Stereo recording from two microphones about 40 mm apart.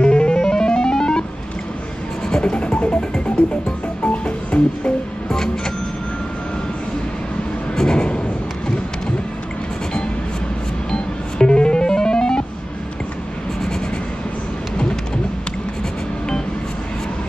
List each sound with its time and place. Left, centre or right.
0.0 s music: left
2.2 s music: left
7.7 s a sound: centre
10.9 s music: left